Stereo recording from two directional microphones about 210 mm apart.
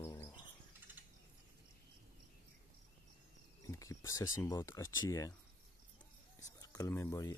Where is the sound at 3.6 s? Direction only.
15° left (ahead or behind).